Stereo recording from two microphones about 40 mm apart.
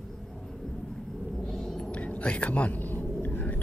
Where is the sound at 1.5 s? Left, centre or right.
Centre.